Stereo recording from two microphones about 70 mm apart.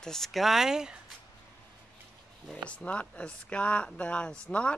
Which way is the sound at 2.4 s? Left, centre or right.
Centre.